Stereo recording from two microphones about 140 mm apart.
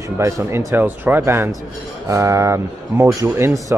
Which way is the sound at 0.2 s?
20° right (ahead or behind).